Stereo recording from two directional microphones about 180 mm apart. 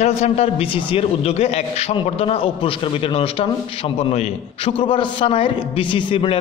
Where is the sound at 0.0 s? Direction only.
35° left (ahead or behind).